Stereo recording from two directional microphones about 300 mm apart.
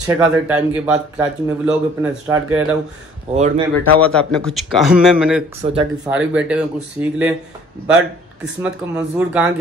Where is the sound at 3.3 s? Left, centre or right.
Right.